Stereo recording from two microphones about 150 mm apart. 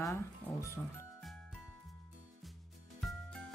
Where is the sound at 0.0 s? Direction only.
20° left (ahead or behind).